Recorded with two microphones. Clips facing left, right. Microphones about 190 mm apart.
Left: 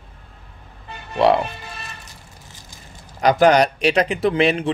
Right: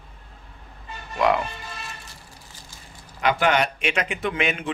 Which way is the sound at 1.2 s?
30° left (ahead or behind).